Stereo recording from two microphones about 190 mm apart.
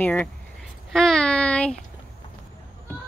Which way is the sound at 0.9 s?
5° left (ahead or behind).